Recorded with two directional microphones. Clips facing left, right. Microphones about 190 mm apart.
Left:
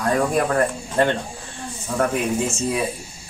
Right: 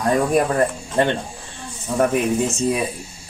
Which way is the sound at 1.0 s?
20° right (ahead or behind).